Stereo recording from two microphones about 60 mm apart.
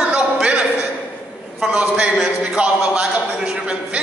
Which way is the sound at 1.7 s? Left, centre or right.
Right.